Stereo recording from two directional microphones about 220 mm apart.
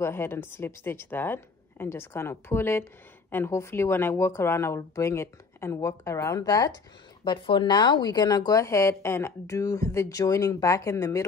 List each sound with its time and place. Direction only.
0.0 s speech: 10° left (ahead or behind)